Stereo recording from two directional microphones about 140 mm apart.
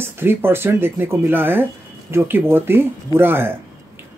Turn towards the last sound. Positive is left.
turn(degrees=-15)  # may be behind; listen again after turning